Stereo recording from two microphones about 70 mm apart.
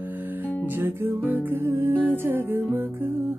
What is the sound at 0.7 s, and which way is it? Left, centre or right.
Music, right.